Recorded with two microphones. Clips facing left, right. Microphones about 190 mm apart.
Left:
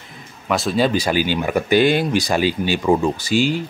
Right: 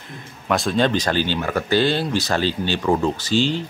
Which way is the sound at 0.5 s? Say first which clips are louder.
Left 1 dB; 5° left (ahead or behind).